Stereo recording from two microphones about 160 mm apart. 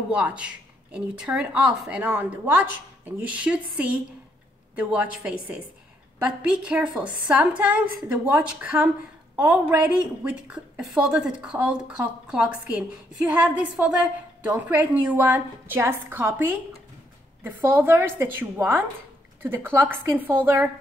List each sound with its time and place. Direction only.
0.1 s a woman's voice: 5° right (ahead or behind)